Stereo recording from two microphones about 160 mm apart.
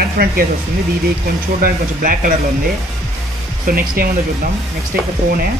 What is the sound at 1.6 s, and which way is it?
Speech, 60° right (ahead or behind).